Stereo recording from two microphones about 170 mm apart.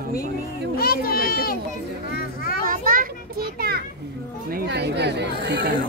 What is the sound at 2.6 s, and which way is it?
Children playing, 55° right (ahead or behind).